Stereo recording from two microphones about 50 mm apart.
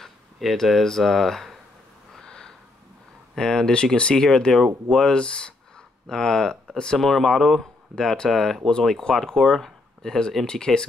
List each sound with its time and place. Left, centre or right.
0.0 s speech: centre
2.1 s a sound: centre
3.3 s speech: centre
5.1 s speech: centre